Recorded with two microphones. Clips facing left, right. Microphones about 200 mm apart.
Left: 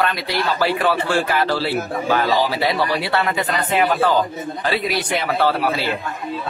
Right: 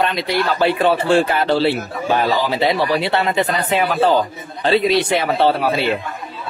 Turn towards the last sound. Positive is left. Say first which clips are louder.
# right 3 dB
turn(degrees=-25)  # may be behind; listen again after turning